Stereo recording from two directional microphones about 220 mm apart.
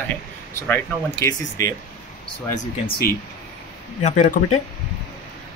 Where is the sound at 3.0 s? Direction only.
45° left (ahead or behind).